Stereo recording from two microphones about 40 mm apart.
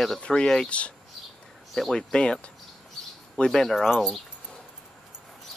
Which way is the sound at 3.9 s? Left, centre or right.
Centre.